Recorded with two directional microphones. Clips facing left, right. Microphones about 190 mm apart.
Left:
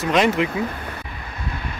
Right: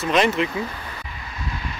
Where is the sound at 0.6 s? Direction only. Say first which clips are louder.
Left 4 dB; 55° left (ahead or behind).